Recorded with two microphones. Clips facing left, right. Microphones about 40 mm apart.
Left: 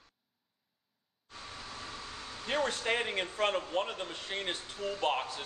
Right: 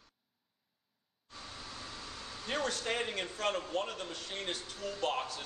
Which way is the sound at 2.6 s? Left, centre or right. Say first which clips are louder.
Left 3 dB; left.